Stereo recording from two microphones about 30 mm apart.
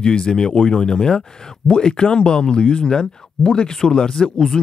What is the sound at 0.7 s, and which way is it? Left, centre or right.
Speech, left.